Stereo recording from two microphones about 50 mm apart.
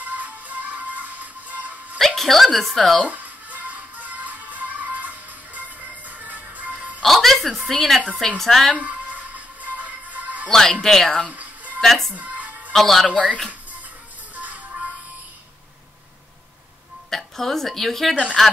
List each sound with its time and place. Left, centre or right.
0.0 s music: right
2.0 s speech: centre
3.1 s music: right
7.0 s a sound: centre
8.4 s speech: centre
8.7 s music: right
10.5 s speech: centre
11.2 s music: right
11.8 s speech: centre
12.2 s music: right
12.7 s speech: centre
14.3 s music: right
17.1 s a woman's voice: centre